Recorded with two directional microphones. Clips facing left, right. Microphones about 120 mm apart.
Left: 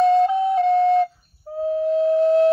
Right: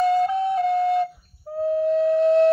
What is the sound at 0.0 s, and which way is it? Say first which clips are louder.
Flute: left 3 dB; centre (ahead or behind).